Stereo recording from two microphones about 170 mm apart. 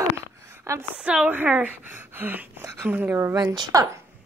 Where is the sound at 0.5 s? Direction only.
15° right (ahead or behind).